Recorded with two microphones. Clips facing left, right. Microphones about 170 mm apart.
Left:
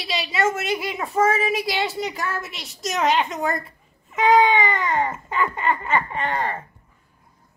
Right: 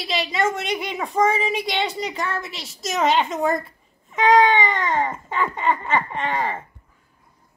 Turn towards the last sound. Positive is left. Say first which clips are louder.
# even
turn(degrees=0)  # may be behind; listen again after turning